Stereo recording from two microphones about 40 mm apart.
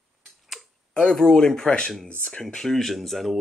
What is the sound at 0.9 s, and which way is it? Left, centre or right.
Speech, left.